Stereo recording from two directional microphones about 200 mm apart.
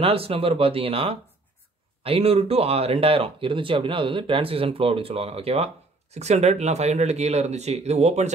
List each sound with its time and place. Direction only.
0.0 s speech: 30° right (ahead or behind)